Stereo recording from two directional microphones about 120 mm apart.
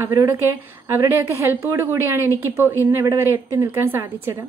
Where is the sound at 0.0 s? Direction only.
25° right (ahead or behind).